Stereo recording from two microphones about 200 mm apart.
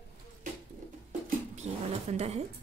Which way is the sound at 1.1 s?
40° right (ahead or behind).